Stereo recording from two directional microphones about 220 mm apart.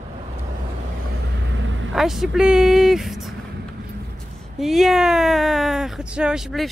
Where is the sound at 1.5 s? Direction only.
60° right (ahead or behind).